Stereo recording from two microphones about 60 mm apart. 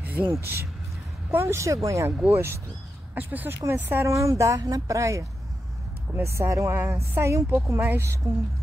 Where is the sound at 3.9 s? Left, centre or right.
Right.